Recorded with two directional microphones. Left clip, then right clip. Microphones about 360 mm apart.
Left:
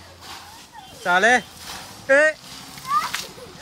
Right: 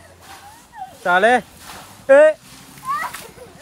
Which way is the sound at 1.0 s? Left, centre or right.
Centre.